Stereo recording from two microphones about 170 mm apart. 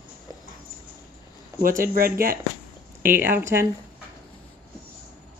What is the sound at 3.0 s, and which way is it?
Speech, 10° right (ahead or behind).